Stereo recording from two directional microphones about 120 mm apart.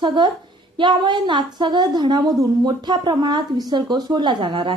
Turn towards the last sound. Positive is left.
turn(degrees=-40)  # may be behind; listen again after turning